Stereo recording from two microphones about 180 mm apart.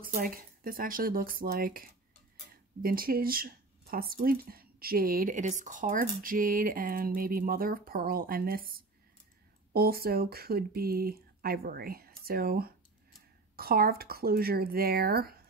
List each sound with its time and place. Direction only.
0.0 s speech: 50° right (ahead or behind)
9.7 s speech: 60° right (ahead or behind)